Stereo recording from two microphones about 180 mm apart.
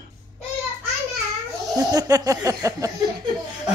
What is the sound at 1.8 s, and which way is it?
Speech, 20° right (ahead or behind).